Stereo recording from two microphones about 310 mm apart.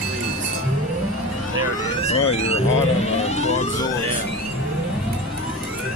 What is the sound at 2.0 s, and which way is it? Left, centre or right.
Speech, centre.